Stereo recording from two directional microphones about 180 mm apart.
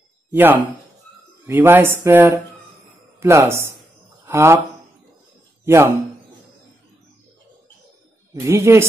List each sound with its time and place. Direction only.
0.3 s speech: 10° right (ahead or behind)
5.7 s speech: 15° right (ahead or behind)
8.4 s speech: 15° right (ahead or behind)